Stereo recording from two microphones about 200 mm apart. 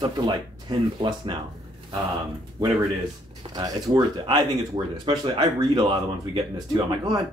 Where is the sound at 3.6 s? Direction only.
20° right (ahead or behind).